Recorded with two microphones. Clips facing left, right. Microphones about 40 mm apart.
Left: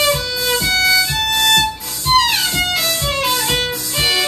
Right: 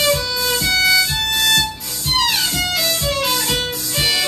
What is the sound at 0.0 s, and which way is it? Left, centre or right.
Violin, centre.